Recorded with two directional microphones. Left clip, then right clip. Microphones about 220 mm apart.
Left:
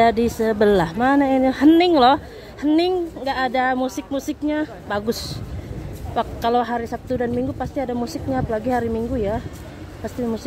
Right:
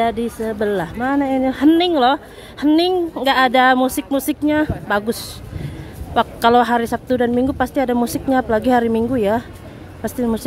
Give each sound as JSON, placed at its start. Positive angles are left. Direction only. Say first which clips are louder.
{"t": 0.0, "sound": "speech", "louder": "left 3 dB", "side_deg": 10}
{"t": 2.6, "sound": "speech", "louder": "right 3 dB", "side_deg": -5}
{"t": 3.2, "sound": "a woman's voice", "louder": "right 11 dB", "side_deg": -20}
{"t": 6.1, "sound": "a woman's voice", "louder": "right 6 dB", "side_deg": -15}